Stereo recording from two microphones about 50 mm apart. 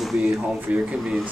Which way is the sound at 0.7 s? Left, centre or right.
Right.